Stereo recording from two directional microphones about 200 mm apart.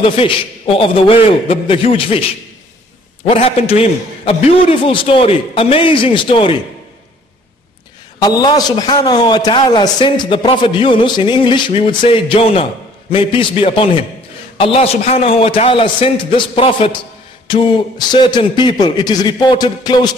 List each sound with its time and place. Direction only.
0.0 s a man's voice: 30° left (ahead or behind)
3.3 s a man's voice: 30° left (ahead or behind)
8.2 s a man's voice: 20° left (ahead or behind)